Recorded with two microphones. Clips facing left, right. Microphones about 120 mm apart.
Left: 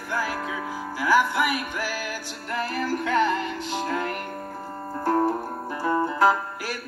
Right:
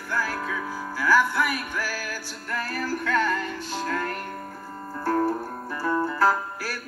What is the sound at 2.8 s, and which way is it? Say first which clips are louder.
Music: left 2 dB; 60° left (ahead or behind).